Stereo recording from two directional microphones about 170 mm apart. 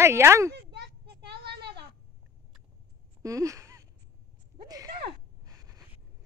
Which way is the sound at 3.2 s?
20° right (ahead or behind).